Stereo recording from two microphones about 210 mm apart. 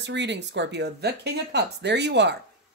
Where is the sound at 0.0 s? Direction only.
55° right (ahead or behind).